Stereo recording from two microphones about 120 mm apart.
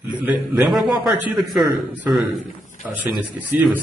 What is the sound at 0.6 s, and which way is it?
Speech, centre (ahead or behind).